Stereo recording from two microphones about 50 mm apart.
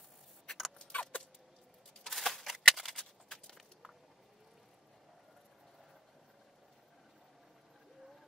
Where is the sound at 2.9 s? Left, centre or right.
Centre.